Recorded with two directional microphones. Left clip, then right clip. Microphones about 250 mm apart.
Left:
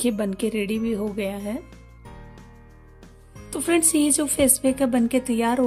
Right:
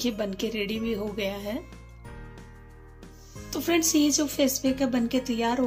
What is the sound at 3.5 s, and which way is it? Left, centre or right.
Speech, left.